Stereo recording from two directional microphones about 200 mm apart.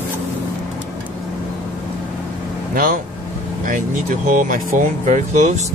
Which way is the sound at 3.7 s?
40° right (ahead or behind).